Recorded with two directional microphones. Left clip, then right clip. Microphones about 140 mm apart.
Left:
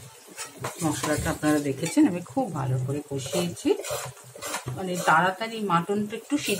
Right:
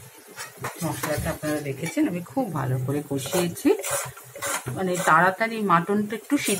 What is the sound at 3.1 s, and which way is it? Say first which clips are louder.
Speech: right 3 dB; 30° right (ahead or behind).